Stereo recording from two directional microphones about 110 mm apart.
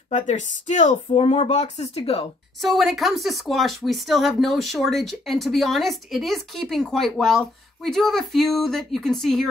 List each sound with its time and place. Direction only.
0.1 s speech: 90° left; by 2.2 s 65° left (ahead or behind)
2.6 s speech: centre (ahead or behind)